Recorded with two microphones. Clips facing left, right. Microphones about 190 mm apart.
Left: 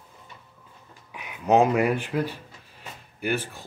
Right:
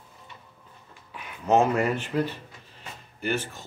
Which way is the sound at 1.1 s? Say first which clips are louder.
Left 2 dB; 15° left (ahead or behind).